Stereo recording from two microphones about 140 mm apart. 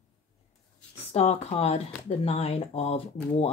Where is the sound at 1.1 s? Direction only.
45° left (ahead or behind).